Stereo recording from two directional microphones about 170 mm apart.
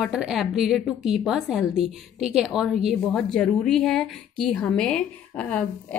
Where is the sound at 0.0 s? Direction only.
5° right (ahead or behind).